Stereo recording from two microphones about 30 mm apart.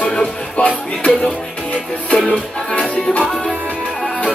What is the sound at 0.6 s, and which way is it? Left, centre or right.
Music, left.